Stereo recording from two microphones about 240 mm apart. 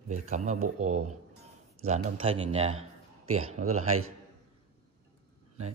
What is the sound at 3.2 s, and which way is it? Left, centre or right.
Speech, right.